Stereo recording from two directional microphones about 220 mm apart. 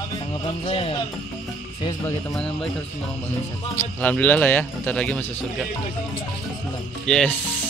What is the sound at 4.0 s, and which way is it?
A man's voice, 5° left (ahead or behind).